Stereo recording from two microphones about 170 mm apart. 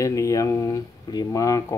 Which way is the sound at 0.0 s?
20° left (ahead or behind).